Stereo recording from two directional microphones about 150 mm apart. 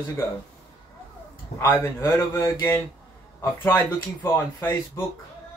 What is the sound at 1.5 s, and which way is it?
Speech, 15° left (ahead or behind).